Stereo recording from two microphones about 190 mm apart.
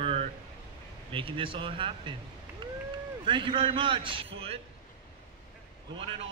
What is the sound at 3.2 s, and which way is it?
A man's voice, 25° right (ahead or behind).